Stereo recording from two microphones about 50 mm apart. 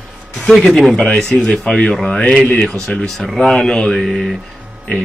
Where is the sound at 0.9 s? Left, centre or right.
Centre.